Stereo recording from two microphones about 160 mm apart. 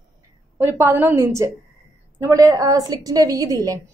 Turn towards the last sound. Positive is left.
turn(degrees=-20)  # may be behind; listen again after turning